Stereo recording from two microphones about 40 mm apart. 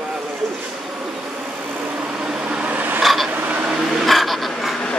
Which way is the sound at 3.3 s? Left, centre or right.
Right.